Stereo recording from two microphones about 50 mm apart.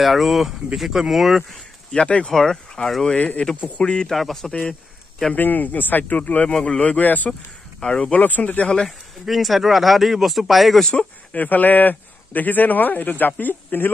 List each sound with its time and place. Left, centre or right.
0.0 s speech: centre
1.9 s speech: left
2.3 s speech: centre
3.2 s speech: left
4.1 s speech: centre
5.3 s speech: left
7.0 s speech: left
7.9 s speech: left
8.2 s speech: left
8.6 s speech: centre
9.2 s speech: centre
11.3 s speech: left